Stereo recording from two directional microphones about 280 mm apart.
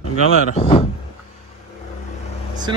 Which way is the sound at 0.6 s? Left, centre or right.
Centre.